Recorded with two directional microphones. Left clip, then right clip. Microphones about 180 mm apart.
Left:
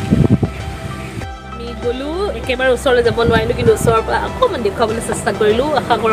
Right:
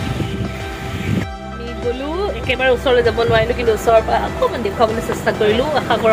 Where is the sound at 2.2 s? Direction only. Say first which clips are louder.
Left 1 dB; 25° left (ahead or behind).